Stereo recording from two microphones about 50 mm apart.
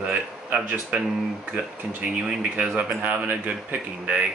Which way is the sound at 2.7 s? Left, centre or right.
Right.